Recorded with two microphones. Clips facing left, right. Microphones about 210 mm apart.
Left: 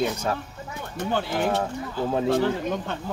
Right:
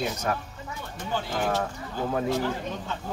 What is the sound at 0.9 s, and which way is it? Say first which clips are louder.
Speech: left 4 dB; 65° left (ahead or behind).